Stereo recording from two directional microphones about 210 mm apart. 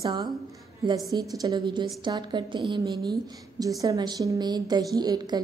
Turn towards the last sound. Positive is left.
turn(degrees=-20)  # may be behind; listen again after turning